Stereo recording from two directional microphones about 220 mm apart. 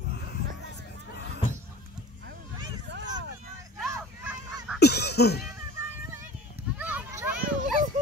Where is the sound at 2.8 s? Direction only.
50° right (ahead or behind).